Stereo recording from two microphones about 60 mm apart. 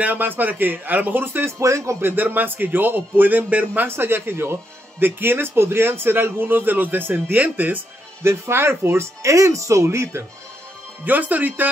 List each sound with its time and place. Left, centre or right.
0.0 s a man's voice: right
1.6 s speech: right
2.0 s a man's voice: right
3.9 s a man's voice: right
8.2 s speech: right
11.1 s speech: right